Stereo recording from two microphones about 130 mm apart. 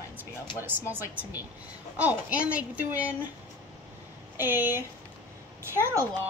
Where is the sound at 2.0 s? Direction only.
10° right (ahead or behind).